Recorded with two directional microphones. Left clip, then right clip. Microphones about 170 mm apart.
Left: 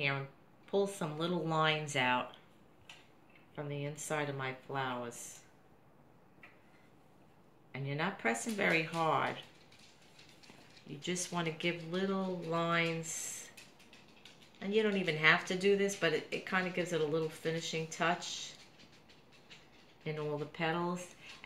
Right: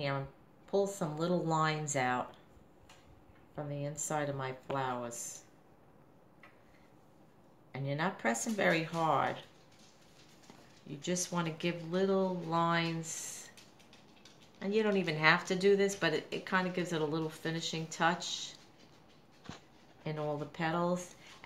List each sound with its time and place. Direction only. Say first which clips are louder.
0.7 s speech: right 1 dB; 30° right (ahead or behind)
3.5 s speech: right 1 dB; 30° right (ahead or behind)
7.7 s speech: right 2 dB; 30° right (ahead or behind)
11.0 s speech: right 2 dB; 30° right (ahead or behind)
14.6 s speech: right 1 dB; 30° right (ahead or behind)
20.0 s speech: right 1 dB; 30° right (ahead or behind)